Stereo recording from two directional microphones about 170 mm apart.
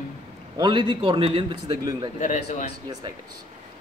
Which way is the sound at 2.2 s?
45° left (ahead or behind).